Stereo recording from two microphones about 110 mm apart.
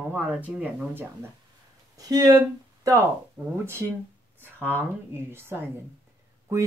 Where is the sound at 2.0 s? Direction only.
35° right (ahead or behind); by 3.8 s 20° right (ahead or behind).